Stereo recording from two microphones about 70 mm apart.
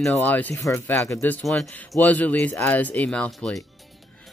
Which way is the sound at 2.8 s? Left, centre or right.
Left.